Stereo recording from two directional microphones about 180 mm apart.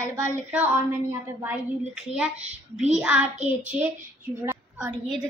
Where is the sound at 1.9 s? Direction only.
5° right (ahead or behind).